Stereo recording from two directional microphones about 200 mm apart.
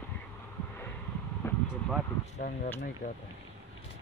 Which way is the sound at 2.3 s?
40° left (ahead or behind).